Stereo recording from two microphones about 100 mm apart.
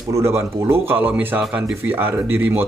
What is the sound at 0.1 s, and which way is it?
Speech, 25° right (ahead or behind).